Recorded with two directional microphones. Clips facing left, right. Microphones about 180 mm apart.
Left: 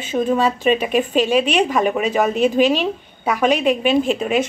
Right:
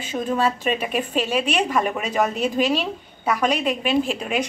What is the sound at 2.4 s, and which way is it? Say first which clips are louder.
A woman's voice: left 6 dB; 25° left (ahead or behind).